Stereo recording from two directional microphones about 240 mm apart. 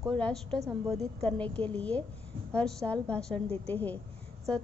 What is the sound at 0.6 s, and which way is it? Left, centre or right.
Speech, centre.